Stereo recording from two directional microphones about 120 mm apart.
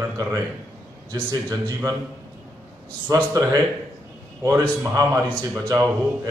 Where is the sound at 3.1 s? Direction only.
30° right (ahead or behind).